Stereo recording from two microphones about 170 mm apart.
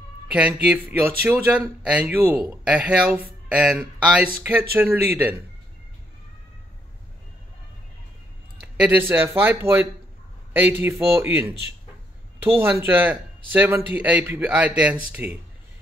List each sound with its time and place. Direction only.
0.3 s speech: 10° right (ahead or behind)
8.5 s speech: 10° right (ahead or behind)